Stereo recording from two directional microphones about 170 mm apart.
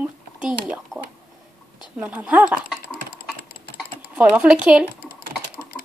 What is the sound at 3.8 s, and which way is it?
Speech, 5° right (ahead or behind).